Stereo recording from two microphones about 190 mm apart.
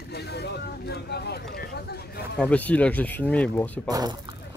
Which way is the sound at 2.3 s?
5° left (ahead or behind).